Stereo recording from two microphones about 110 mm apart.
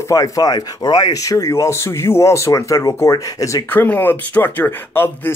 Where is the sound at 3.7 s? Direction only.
15° left (ahead or behind).